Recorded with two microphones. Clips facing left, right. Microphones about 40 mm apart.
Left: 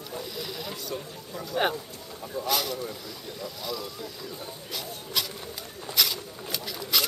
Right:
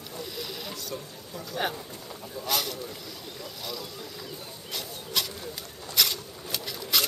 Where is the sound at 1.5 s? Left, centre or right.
Left.